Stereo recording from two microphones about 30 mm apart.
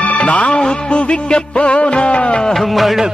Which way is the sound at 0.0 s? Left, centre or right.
Left.